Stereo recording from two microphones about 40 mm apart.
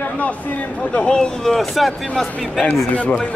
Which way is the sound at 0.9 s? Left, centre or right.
Left.